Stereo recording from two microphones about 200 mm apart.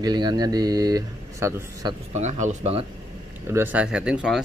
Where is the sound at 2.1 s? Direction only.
35° right (ahead or behind).